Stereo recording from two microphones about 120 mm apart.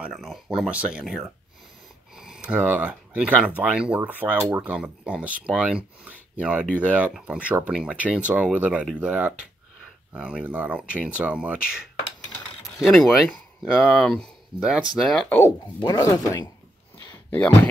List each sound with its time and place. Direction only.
0.1 s speech: centre (ahead or behind)
12.8 s speech: centre (ahead or behind)
14.6 s speech: 5° right (ahead or behind)
15.2 s chopping: 20° left (ahead or behind)
15.8 s chopping: 30° left (ahead or behind)